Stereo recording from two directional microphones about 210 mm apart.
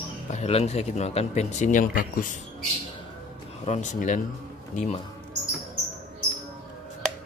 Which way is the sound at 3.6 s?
35° left (ahead or behind).